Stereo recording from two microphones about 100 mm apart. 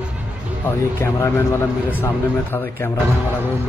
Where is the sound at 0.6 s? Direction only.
25° left (ahead or behind).